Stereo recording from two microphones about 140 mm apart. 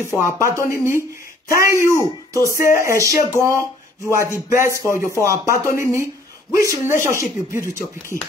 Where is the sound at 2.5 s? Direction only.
80° left.